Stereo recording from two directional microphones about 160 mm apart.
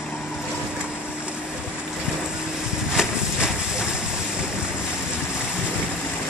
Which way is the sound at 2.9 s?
5° right (ahead or behind).